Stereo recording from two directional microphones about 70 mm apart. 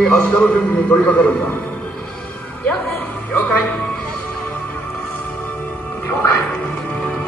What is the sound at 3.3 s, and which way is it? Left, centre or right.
Speech, left.